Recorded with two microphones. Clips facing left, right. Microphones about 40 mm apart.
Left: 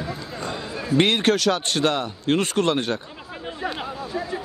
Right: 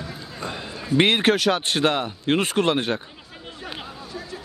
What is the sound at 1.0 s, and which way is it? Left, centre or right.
Speech, centre.